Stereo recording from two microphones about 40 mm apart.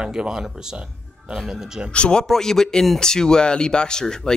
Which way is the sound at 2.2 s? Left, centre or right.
Centre.